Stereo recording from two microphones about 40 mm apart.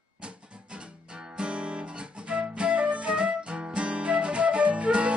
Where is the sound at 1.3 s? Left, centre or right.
Right.